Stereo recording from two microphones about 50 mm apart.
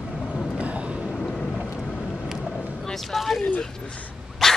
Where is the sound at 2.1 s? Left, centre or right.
Centre.